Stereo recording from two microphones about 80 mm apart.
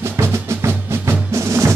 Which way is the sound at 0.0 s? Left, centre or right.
Right.